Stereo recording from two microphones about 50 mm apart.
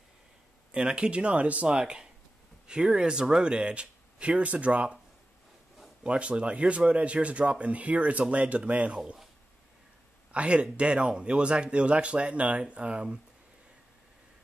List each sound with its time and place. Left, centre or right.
0.7 s speech: right
1.7 s speech: centre
6.0 s speech: right
10.3 s speech: right